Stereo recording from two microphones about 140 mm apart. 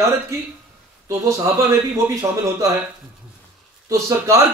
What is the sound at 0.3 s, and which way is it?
Speech, 20° right (ahead or behind).